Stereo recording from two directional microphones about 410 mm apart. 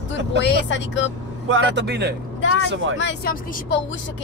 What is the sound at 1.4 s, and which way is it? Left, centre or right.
A man's voice, right.